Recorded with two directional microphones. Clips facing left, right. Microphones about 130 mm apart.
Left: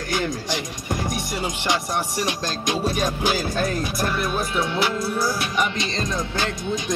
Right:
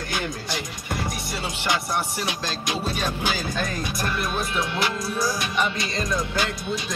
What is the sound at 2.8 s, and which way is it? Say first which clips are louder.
Speech: left 5 dB; 40° left (ahead or behind).